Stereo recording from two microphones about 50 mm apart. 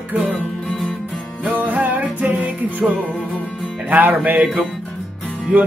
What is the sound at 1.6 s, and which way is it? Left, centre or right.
Music, right.